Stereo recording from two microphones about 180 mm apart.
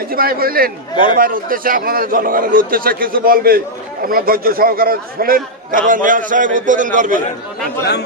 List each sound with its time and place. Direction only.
0.1 s a man's voice: 55° right (ahead or behind)